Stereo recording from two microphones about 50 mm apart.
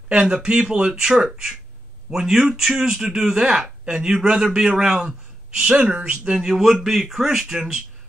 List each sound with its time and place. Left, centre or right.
0.1 s a man's voice: centre
6.3 s a man's voice: centre